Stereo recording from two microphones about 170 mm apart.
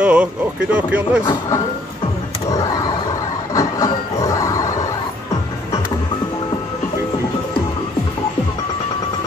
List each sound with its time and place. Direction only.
0.0 s music: 5° right (ahead or behind)
0.7 s speech: 10° right (ahead or behind)
3.5 s train: 20° left (ahead or behind)